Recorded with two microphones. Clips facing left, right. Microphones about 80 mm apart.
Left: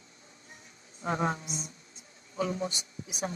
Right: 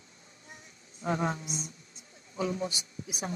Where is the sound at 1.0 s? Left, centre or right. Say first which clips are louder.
Even; left.